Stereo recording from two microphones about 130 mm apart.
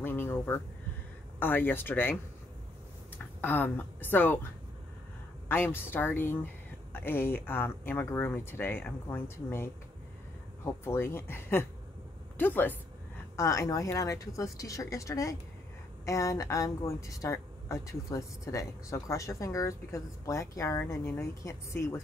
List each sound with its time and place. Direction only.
0.0 s speech: 15° left (ahead or behind)
3.3 s speech: 15° left (ahead or behind)
5.5 s speech: 15° left (ahead or behind)
13.4 s speech: 25° left (ahead or behind)